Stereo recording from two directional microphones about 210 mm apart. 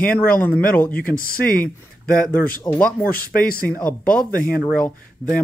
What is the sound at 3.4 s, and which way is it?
Speech, 45° left (ahead or behind).